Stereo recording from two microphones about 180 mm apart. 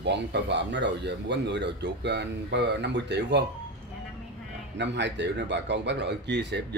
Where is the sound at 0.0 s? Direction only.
75° right (ahead or behind).